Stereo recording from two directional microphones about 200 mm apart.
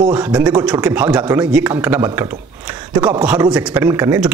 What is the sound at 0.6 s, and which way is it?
Speech, 5° right (ahead or behind).